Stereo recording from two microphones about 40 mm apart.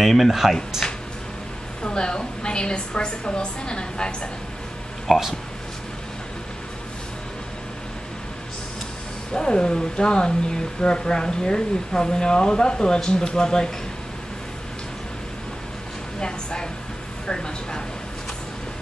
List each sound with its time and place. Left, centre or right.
0.0 s speech: centre
0.8 s a sound: centre
1.8 s speech: left
5.1 s speech: centre
9.3 s speech: centre
16.2 s a sound: left
17.3 s speech: left